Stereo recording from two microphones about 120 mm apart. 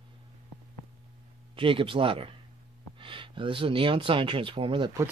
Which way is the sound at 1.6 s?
45° right (ahead or behind).